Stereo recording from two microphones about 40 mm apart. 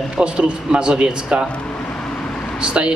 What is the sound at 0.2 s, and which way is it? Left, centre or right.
Speech, right.